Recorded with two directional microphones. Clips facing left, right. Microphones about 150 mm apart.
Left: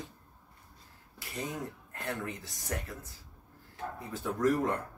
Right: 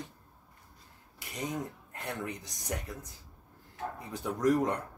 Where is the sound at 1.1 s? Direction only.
20° right (ahead or behind).